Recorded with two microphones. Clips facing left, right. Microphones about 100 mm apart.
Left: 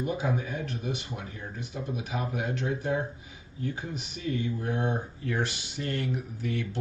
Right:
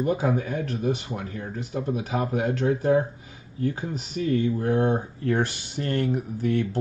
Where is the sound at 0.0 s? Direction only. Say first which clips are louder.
Right 6 dB; 50° right (ahead or behind).